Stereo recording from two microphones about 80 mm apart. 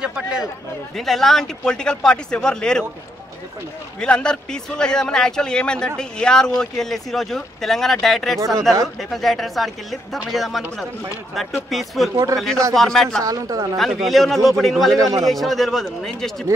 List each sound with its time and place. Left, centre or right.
0.0 s speech: centre
0.9 s a man's voice: centre
4.0 s a man's voice: centre
13.2 s a woman's voice: right
13.7 s speech: centre
15.0 s a woman's voice: right
15.2 s speech: centre